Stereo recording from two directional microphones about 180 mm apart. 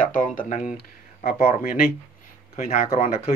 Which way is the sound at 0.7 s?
60° left (ahead or behind).